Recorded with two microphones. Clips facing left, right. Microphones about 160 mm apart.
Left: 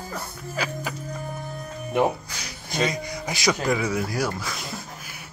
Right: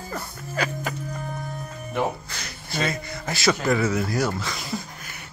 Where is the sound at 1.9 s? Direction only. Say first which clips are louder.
Left 4 dB; 10° left (ahead or behind).